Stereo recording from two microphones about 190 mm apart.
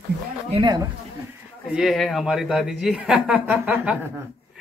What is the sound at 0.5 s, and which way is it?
Speech, 20° right (ahead or behind).